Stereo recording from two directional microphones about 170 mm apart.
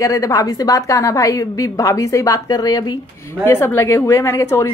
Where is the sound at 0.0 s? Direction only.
20° left (ahead or behind).